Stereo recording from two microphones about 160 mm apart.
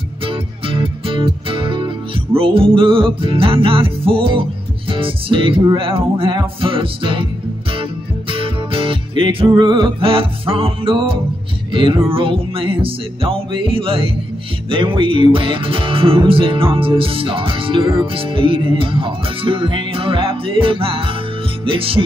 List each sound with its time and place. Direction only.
0.2 s music: 35° right (ahead or behind)